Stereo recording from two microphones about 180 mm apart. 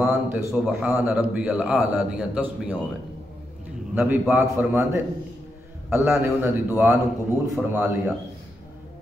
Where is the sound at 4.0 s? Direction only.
5° right (ahead or behind).